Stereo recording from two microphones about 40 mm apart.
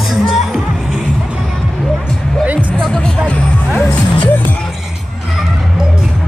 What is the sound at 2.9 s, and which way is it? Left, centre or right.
Music, left.